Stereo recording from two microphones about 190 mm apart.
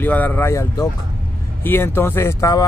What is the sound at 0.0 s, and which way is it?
Speech, 10° left (ahead or behind).